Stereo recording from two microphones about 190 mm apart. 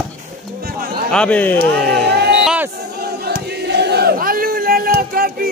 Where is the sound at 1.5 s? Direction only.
60° right (ahead or behind).